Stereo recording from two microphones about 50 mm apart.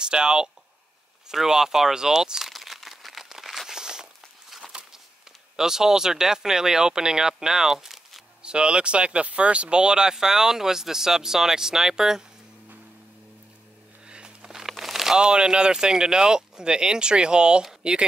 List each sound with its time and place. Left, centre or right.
0.0 s speech: centre
3.3 s crumpling: centre
3.7 s a sound: centre
5.6 s speech: centre
8.4 s speech: centre
14.0 s speech: centre